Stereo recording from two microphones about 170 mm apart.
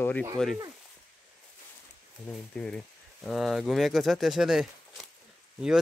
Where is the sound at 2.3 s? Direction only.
5° left (ahead or behind).